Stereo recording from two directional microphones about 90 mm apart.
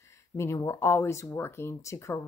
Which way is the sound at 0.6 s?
30° left (ahead or behind).